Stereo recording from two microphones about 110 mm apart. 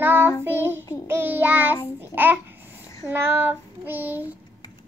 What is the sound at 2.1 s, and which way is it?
Speech, 15° right (ahead or behind).